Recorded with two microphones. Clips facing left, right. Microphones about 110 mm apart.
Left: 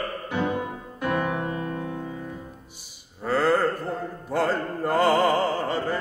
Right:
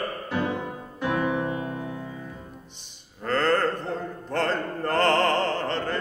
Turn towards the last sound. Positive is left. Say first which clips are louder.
# left 2 dB
turn(degrees=10)  # may be behind; listen again after turning